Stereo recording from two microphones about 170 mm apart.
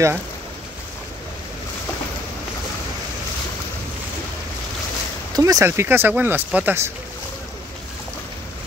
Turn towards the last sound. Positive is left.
turn(degrees=-10)  # may be behind; listen again after turning